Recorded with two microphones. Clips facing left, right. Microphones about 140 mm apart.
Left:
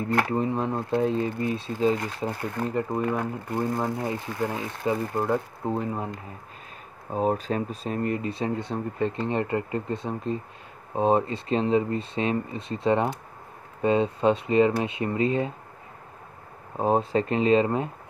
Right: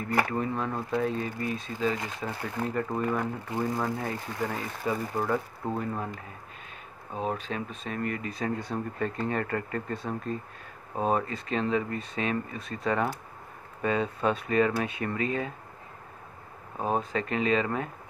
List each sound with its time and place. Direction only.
0.3 s speech: 30° left (ahead or behind)
2.7 s speech: 20° left (ahead or behind)
7.1 s speech: 40° left (ahead or behind)
16.7 s speech: 30° left (ahead or behind)